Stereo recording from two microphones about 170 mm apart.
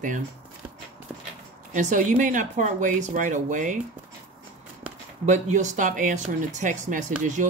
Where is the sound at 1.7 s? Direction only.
50° right (ahead or behind).